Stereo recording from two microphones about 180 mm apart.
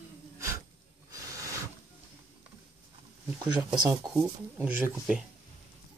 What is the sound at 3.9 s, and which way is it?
Speech, 15° right (ahead or behind).